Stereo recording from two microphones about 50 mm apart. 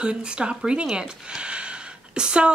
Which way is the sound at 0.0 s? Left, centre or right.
Centre.